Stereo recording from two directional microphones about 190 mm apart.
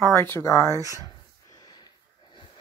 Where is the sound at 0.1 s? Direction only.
15° left (ahead or behind).